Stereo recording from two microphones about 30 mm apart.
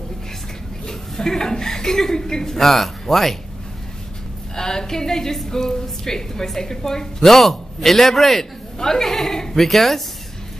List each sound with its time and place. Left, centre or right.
0.8 s a woman's voice: centre
4.6 s a woman's voice: centre
8.7 s a woman's voice: centre